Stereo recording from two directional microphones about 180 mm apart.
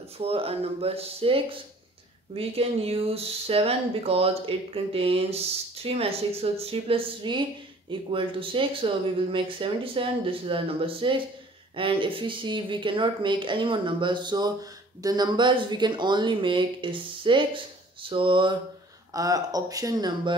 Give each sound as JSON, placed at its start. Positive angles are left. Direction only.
{"t": 0.2, "sound": "speech", "side_deg": -35}